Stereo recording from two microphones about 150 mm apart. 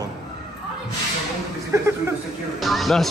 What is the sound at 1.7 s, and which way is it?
Speech, 20° right (ahead or behind).